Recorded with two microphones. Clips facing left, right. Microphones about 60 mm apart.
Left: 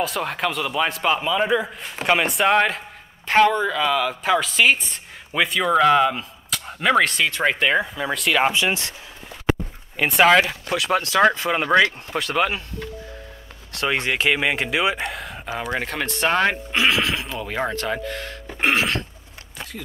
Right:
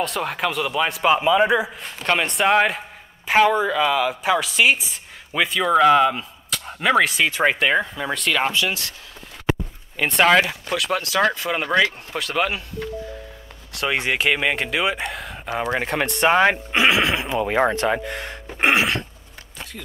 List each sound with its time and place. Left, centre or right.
0.0 s speech: centre
2.0 s speech: centre
8.5 s speech: left
9.9 s speech: centre
13.7 s speech: centre
18.6 s a sound: centre